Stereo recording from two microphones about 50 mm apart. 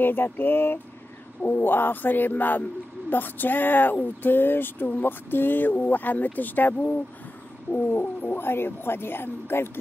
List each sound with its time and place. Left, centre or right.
0.0 s speech: left
7.7 s bird: right
8.0 s speech: left
8.4 s speech: left